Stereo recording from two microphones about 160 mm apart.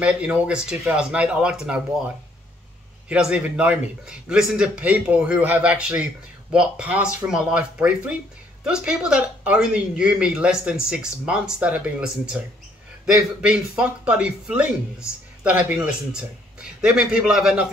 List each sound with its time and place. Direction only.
0.0 s speech: 10° right (ahead or behind)
3.1 s a man's voice: 5° right (ahead or behind)